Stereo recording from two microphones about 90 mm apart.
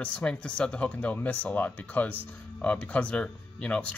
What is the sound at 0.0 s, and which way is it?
Speech, 15° left (ahead or behind).